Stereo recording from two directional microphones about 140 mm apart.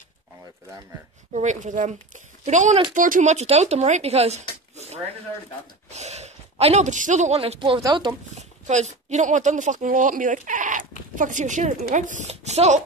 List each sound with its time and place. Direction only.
1.3 s speech: 60° right (ahead or behind); by 8.1 s 30° right (ahead or behind)
8.3 s speech: 55° right (ahead or behind)